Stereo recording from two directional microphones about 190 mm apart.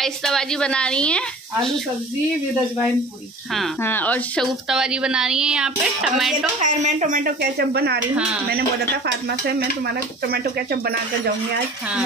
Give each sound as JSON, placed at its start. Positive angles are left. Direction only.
{"t": 0.0, "sound": "speech", "side_deg": 5}
{"t": 3.8, "sound": "speech", "side_deg": 10}
{"t": 4.6, "sound": "speech", "side_deg": -5}
{"t": 6.6, "sound": "speech", "side_deg": -40}